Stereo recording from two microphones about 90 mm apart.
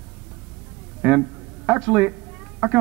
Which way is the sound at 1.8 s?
10° right (ahead or behind).